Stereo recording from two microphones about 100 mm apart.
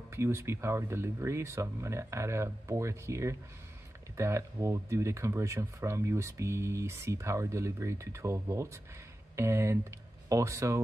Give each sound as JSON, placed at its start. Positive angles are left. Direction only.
{"t": 0.1, "sound": "speech", "side_deg": -25}